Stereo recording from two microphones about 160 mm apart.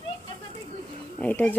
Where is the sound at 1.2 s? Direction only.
10° left (ahead or behind).